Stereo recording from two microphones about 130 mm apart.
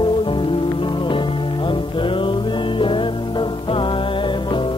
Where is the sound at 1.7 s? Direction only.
40° left (ahead or behind).